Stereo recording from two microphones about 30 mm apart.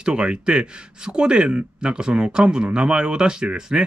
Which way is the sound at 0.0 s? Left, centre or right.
Right.